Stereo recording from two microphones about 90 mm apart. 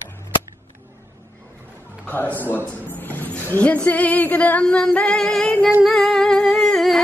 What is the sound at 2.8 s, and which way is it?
Music, 20° left (ahead or behind).